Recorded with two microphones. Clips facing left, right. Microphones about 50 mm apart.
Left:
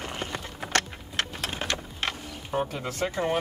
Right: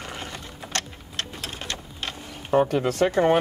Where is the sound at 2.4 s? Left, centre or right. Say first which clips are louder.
Right 9 dB; right.